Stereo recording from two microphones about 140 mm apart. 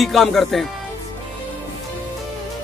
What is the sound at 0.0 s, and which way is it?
Speech, centre (ahead or behind).